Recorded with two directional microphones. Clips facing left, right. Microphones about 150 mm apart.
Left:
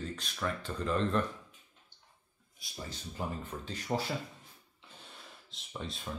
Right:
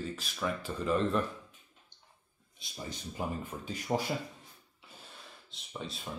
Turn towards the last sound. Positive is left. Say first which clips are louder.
# even
turn(degrees=0)  # may be behind; listen again after turning